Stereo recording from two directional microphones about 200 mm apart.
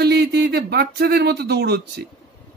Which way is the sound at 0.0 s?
55° right (ahead or behind).